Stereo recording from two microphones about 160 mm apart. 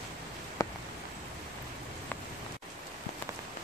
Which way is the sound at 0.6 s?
20° left (ahead or behind).